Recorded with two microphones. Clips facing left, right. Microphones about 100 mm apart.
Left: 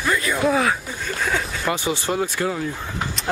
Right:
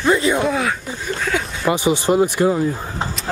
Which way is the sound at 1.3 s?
15° right (ahead or behind).